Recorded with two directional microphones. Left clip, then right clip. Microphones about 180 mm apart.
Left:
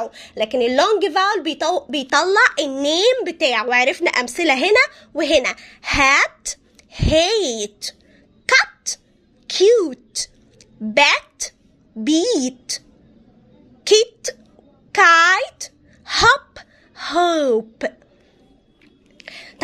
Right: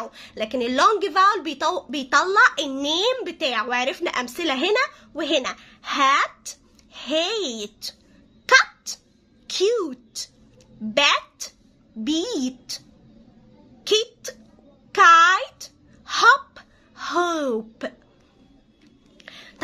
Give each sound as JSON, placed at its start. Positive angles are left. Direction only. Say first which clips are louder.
{"t": 0.0, "sound": "speech", "louder": "left 7 dB", "side_deg": 25}
{"t": 13.8, "sound": "speech", "louder": "left 7 dB", "side_deg": 30}
{"t": 19.1, "sound": "a sound", "louder": "left 6 dB", "side_deg": 30}